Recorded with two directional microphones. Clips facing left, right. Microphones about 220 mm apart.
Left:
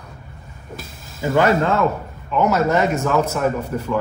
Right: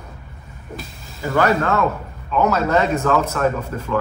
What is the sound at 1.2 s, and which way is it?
Speech, 15° left (ahead or behind).